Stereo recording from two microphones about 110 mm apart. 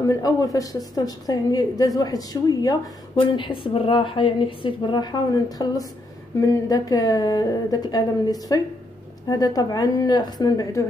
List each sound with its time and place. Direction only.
0.0 s a woman's voice: 30° left (ahead or behind)
3.2 s a woman's voice: 50° left (ahead or behind); by 10.9 s 30° left (ahead or behind)